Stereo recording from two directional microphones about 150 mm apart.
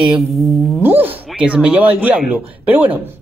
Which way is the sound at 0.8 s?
15° right (ahead or behind).